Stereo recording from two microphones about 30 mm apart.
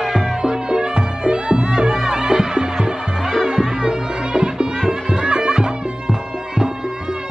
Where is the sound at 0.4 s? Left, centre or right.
Right.